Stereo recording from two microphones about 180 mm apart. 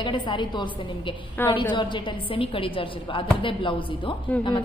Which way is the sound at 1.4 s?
10° left (ahead or behind).